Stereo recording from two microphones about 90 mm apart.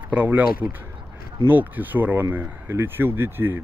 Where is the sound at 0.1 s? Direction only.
20° right (ahead or behind).